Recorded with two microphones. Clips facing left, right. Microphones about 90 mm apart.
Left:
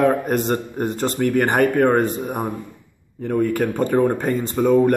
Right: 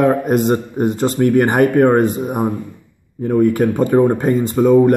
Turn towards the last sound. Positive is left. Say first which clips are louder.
# right 5 dB
turn(degrees=-5)  # may be behind; listen again after turning